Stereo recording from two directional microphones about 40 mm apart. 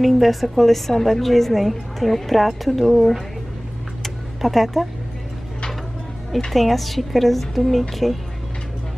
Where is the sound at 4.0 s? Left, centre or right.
Centre.